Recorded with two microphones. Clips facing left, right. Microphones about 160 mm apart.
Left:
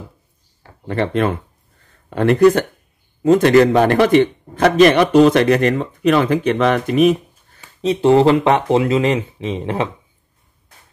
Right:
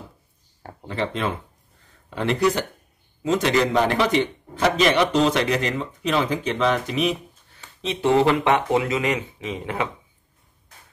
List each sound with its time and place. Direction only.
0.8 s a man's voice: 60° left (ahead or behind)
7.8 s speech: 35° left (ahead or behind)